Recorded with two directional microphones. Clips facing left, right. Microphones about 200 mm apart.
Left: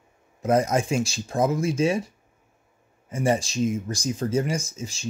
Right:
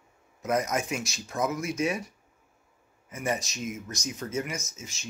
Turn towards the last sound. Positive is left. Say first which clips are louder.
# left 8 dB
turn(degrees=30)  # may be behind; listen again after turning